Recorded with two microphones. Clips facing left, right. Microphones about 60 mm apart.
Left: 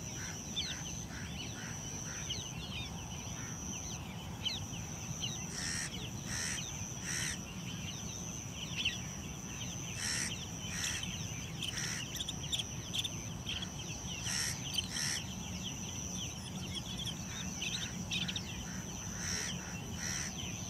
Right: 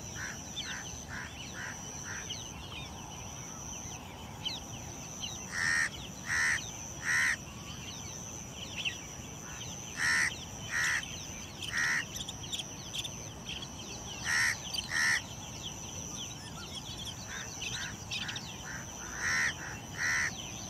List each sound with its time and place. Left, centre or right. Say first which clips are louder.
5.5 s crow: right 12 dB; right
9.9 s crow: right 14 dB; right
11.7 s duck: right 15 dB; right
14.2 s crow: right 14 dB; right
19.1 s goose: right 14 dB; right
20.0 s crow: right 16 dB; right